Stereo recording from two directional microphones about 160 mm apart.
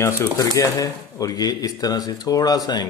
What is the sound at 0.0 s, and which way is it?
Speech, 20° left (ahead or behind).